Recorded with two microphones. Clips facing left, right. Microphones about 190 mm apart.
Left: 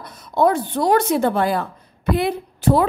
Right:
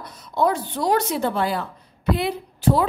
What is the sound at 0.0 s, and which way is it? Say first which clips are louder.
A woman's voice: left 4 dB; 55° left (ahead or behind).